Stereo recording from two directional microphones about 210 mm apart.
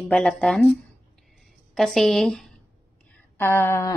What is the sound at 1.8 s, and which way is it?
A woman's voice, centre (ahead or behind).